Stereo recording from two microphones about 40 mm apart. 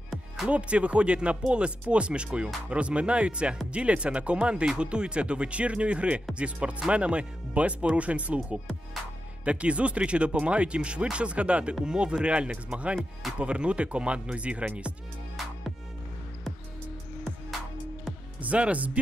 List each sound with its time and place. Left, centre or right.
0.5 s speech: right
9.4 s speech: right
18.4 s speech: right